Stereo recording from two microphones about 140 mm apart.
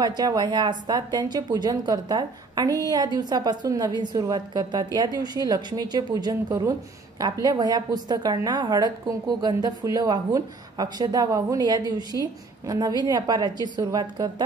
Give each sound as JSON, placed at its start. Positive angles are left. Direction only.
{"t": 0.0, "sound": "a woman's voice", "side_deg": -30}